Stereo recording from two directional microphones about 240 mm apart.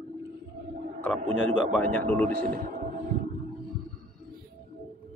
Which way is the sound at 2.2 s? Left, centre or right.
Right.